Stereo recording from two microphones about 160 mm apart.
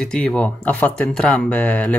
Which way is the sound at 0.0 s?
5° left (ahead or behind).